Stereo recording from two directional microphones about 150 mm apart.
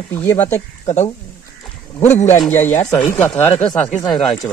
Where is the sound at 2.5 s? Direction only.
15° left (ahead or behind).